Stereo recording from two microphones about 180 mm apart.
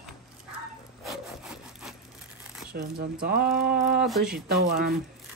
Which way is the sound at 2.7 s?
55° right (ahead or behind).